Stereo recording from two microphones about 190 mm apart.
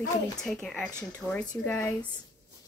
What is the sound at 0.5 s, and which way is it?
Speech, centre (ahead or behind).